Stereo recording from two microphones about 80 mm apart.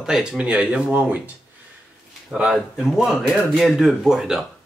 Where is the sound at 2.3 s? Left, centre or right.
Centre.